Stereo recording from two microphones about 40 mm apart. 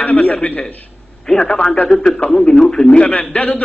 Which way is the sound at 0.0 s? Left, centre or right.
Left.